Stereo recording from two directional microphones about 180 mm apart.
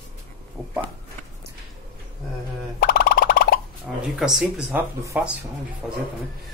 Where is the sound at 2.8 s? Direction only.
50° left (ahead or behind).